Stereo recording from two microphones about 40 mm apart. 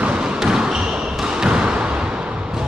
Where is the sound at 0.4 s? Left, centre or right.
Centre.